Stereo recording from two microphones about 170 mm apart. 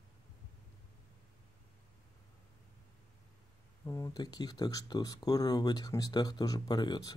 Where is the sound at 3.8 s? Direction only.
20° left (ahead or behind).